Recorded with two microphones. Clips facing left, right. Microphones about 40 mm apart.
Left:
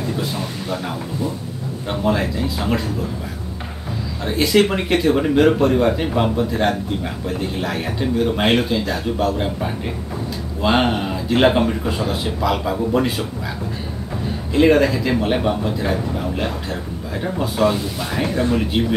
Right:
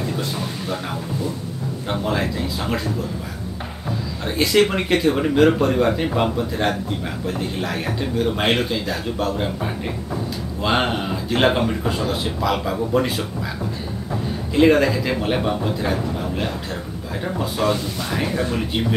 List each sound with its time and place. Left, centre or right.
0.2 s speech: centre
1.2 s speech: centre
2.0 s speech: centre
4.2 s speech: centre
14.5 s speech: centre